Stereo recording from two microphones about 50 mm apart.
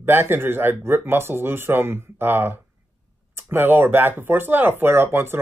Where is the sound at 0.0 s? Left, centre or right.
Right.